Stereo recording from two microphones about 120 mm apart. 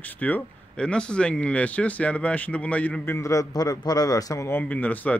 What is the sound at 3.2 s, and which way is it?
A man's voice, 25° left (ahead or behind).